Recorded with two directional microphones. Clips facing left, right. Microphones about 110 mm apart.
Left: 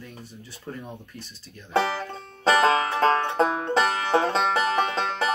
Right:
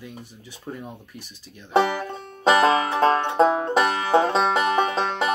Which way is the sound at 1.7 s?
20° right (ahead or behind).